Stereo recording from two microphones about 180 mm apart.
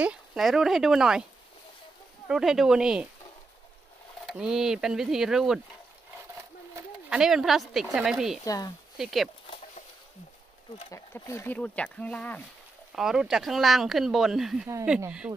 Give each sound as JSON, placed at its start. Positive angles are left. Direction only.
{"t": 0.0, "sound": "speech", "side_deg": -5}
{"t": 2.2, "sound": "speech", "side_deg": 0}
{"t": 4.3, "sound": "speech", "side_deg": -5}
{"t": 7.1, "sound": "speech", "side_deg": -5}
{"t": 8.5, "sound": "speech", "side_deg": 20}
{"t": 8.9, "sound": "speech", "side_deg": 0}
{"t": 10.9, "sound": "speech", "side_deg": 15}
{"t": 12.9, "sound": "speech", "side_deg": 0}